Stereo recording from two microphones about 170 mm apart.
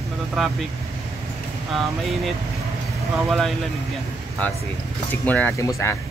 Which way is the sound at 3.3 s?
Centre (ahead or behind).